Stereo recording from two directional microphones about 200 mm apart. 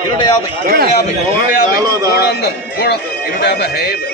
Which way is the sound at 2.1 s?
55° left (ahead or behind).